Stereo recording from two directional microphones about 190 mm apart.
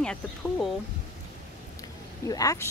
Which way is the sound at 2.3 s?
20° left (ahead or behind).